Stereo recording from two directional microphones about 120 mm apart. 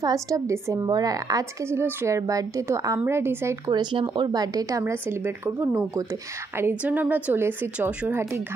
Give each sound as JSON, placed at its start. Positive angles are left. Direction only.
{"t": 0.0, "sound": "a woman's voice", "side_deg": -30}
{"t": 3.7, "sound": "a woman's voice", "side_deg": -40}